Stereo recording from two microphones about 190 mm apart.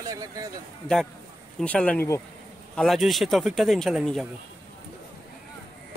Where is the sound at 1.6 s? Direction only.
5° left (ahead or behind).